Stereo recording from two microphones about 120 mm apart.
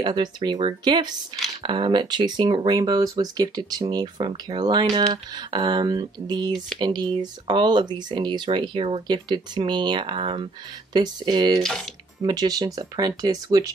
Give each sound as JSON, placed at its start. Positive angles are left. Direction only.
{"t": 0.0, "sound": "speech", "side_deg": -40}
{"t": 11.6, "sound": "speech", "side_deg": 5}
{"t": 12.2, "sound": "speech", "side_deg": -35}